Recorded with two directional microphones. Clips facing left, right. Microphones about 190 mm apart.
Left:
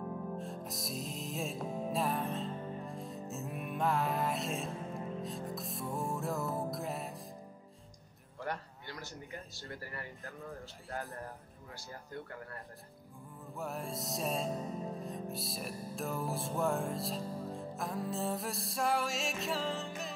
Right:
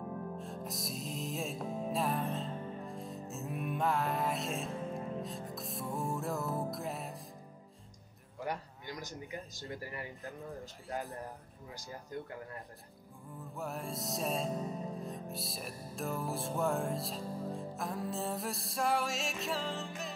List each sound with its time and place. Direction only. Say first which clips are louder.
0.4 s music: even; centre (ahead or behind)
8.4 s a man's voice: right 1 dB; 15° right (ahead or behind)
13.4 s music: even; centre (ahead or behind)